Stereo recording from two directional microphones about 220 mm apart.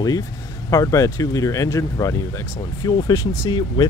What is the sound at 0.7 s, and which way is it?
Speech, 15° left (ahead or behind).